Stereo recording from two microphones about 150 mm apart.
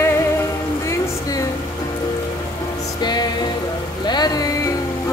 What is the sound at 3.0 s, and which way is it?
Music, 30° left (ahead or behind).